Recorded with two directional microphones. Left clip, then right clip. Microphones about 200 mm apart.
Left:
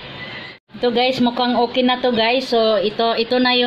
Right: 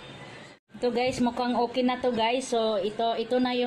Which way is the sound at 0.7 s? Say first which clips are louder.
Left 9 dB; 5° left (ahead or behind).